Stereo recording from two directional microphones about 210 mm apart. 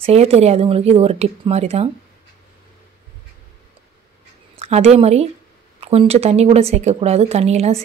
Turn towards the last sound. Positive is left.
turn(degrees=-30)  # may be behind; listen again after turning